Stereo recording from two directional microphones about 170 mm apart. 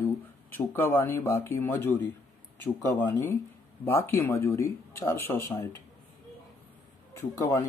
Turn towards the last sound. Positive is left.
turn(degrees=15)  # may be behind; listen again after turning